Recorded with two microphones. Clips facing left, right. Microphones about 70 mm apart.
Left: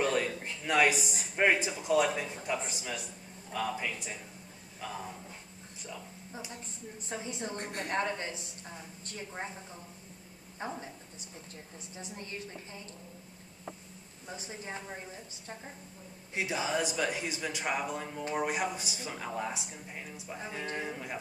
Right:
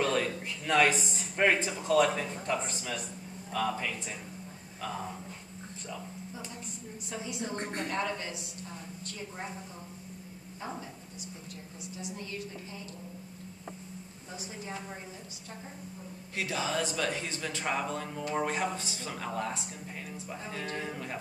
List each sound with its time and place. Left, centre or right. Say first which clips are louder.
0.0 s a sound: right 1 dB; centre
0.7 s speech: right 1 dB; centre
7.1 s a woman's voice: right 1 dB; left
12.0 s a woman's voice: right 3 dB; left
14.3 s a woman's voice: right 1 dB; left
16.3 s speech: even; centre